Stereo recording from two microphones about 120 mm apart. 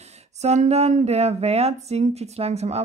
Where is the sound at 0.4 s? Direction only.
65° right (ahead or behind).